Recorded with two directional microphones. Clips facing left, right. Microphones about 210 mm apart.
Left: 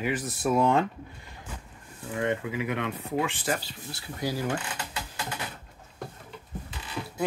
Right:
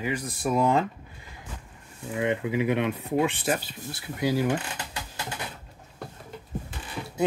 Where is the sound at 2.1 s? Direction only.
15° right (ahead or behind).